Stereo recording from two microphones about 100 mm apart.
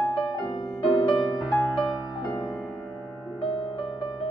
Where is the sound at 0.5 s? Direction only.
40° left (ahead or behind).